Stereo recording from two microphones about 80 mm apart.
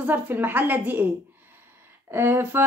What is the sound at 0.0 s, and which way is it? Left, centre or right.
A woman's voice, right.